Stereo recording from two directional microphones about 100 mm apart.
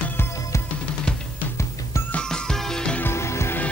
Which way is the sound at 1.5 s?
30° left (ahead or behind).